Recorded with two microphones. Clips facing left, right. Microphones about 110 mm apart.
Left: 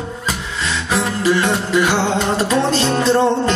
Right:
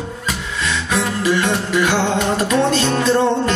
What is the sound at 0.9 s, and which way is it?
Music, 30° left (ahead or behind).